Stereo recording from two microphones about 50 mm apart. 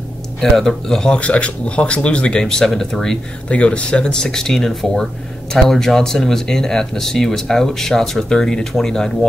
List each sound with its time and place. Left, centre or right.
0.4 s speech: centre
1.2 s speech: left
2.4 s speech: centre
3.4 s speech: left